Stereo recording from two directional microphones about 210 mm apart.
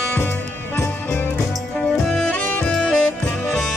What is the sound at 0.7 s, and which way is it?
Music, 10° left (ahead or behind).